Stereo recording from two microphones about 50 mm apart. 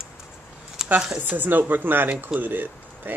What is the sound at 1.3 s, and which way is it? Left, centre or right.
Speech, right.